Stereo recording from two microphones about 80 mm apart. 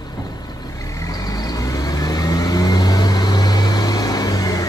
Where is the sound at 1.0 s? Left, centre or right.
Left.